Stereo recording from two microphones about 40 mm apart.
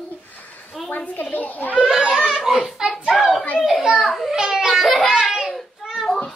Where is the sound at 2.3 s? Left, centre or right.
Centre.